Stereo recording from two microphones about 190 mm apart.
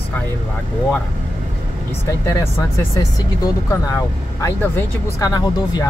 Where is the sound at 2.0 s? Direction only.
15° left (ahead or behind).